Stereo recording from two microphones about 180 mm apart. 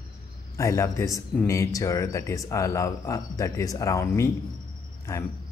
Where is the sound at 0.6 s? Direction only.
15° left (ahead or behind).